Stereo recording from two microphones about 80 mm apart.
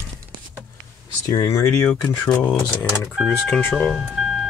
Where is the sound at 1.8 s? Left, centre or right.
Centre.